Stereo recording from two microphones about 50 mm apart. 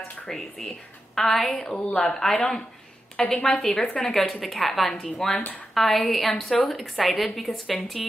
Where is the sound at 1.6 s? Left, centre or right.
Centre.